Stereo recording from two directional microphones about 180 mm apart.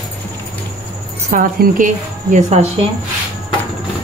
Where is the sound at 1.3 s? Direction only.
45° right (ahead or behind).